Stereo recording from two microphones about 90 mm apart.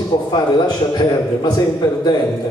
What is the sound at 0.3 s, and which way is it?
A man's voice, 55° left (ahead or behind).